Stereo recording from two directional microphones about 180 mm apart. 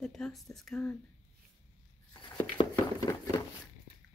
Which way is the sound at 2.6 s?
25° left (ahead or behind).